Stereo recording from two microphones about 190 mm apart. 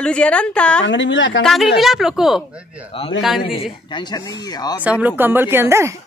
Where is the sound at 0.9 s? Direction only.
80° left.